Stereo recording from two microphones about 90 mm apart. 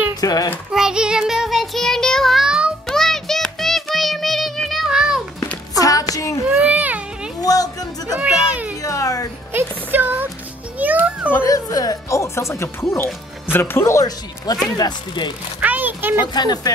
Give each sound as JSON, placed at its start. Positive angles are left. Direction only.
{"t": 0.1, "sound": "a child's voice", "side_deg": 45}
{"t": 0.7, "sound": "child singing", "side_deg": -10}
{"t": 2.9, "sound": "music", "side_deg": 5}
{"t": 5.8, "sound": "music", "side_deg": 40}
{"t": 6.5, "sound": "baby cry", "side_deg": -15}
{"t": 7.3, "sound": "music", "side_deg": 45}
{"t": 8.2, "sound": "a sound", "side_deg": -15}
{"t": 8.8, "sound": "a sound", "side_deg": 40}
{"t": 9.5, "sound": "music", "side_deg": -25}
{"t": 11.4, "sound": "speech", "side_deg": 40}
{"t": 14.0, "sound": "speech", "side_deg": 45}
{"t": 15.6, "sound": "a sound", "side_deg": -20}
{"t": 16.3, "sound": "speech", "side_deg": 50}